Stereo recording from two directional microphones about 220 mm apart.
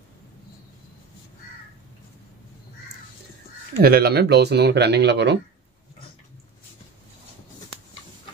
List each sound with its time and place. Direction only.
3.8 s speech: 45° right (ahead or behind)